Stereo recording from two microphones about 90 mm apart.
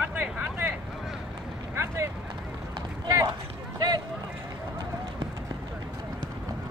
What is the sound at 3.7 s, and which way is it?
Run, 50° right (ahead or behind).